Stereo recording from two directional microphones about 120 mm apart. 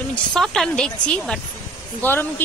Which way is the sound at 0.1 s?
5° left (ahead or behind).